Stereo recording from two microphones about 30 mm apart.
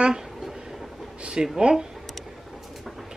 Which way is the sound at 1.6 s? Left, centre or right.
Right.